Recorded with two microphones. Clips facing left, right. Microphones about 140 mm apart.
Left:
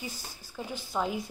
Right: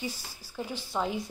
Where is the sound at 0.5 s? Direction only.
Centre (ahead or behind).